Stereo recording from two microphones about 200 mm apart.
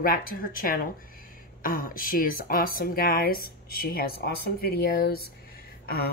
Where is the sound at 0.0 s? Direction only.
45° left (ahead or behind).